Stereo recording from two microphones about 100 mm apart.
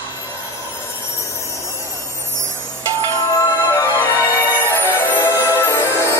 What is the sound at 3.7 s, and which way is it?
Music, 25° left (ahead or behind).